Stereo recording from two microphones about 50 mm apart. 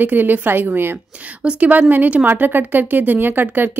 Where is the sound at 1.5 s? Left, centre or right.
Right.